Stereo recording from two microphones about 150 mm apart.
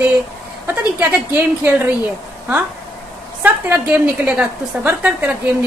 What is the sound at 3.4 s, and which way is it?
A woman's voice, 10° right (ahead or behind).